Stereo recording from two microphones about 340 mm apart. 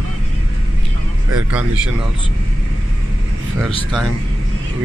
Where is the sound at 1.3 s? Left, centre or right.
Centre.